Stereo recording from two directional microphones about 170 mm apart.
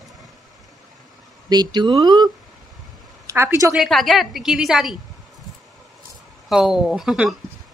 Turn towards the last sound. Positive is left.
turn(degrees=0)  # may be behind; listen again after turning